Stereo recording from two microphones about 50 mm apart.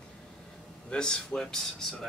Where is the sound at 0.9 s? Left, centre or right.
Centre.